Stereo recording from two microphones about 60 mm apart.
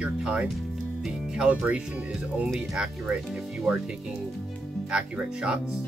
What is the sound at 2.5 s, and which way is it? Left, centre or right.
Speech, centre.